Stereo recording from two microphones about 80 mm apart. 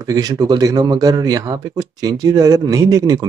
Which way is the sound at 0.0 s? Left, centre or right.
Right.